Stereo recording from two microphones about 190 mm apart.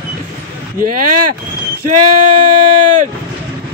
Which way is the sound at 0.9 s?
45° right (ahead or behind).